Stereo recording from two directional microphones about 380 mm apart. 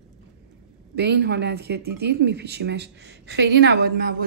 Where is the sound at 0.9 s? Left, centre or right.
Right.